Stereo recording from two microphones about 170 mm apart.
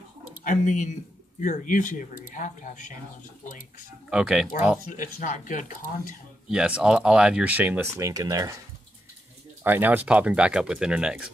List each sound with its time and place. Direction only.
0.4 s speech: 50° left (ahead or behind)
4.1 s speech: 5° right (ahead or behind)
4.8 s speech: 50° left (ahead or behind)
6.5 s speech: 5° right (ahead or behind)
9.6 s speech: 10° right (ahead or behind)